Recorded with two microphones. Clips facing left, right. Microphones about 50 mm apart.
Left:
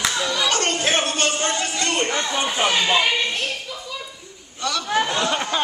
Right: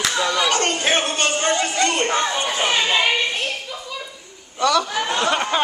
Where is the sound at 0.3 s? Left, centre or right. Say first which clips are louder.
Right 2 dB; centre.